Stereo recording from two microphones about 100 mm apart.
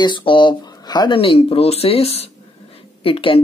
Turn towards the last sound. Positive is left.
turn(degrees=65)  # may be behind; listen again after turning